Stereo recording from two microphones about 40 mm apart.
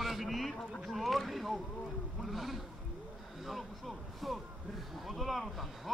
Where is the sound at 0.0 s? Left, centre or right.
Centre.